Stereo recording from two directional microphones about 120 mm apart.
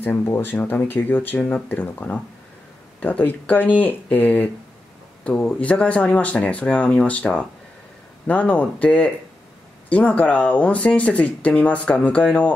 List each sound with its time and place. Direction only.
0.0 s speech: 20° left (ahead or behind)